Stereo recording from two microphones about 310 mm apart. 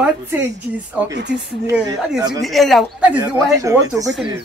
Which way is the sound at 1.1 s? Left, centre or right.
Right.